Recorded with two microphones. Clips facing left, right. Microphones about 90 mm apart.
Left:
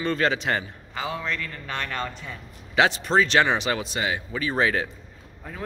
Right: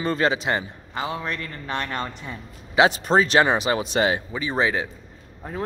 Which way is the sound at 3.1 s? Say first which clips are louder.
Right 1 dB; 15° right (ahead or behind).